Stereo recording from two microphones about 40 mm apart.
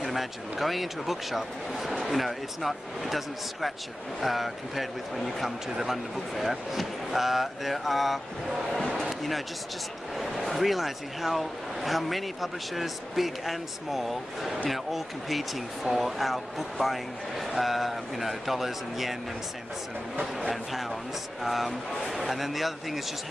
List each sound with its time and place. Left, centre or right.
0.0 s speech: centre
10.1 s speech: centre
21.4 s speech: centre